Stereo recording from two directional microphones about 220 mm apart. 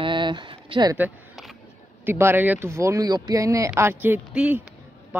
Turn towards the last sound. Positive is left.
turn(degrees=-5)  # may be behind; listen again after turning